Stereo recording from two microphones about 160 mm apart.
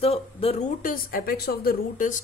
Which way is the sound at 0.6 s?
60° left (ahead or behind).